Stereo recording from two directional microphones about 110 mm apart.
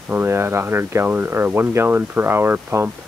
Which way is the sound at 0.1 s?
20° right (ahead or behind).